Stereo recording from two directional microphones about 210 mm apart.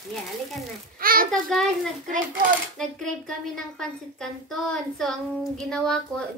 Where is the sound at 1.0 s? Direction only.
45° right (ahead or behind).